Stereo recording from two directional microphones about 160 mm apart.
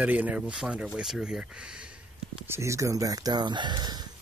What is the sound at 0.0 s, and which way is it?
Speech, 10° right (ahead or behind).